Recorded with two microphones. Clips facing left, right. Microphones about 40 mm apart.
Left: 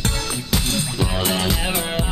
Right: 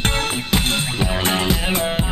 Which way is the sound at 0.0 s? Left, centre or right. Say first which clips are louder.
Right 4 dB; right.